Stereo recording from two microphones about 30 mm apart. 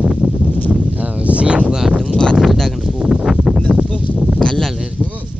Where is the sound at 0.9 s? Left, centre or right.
Right.